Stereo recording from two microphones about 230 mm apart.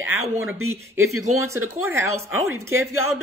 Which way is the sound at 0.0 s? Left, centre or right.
Centre.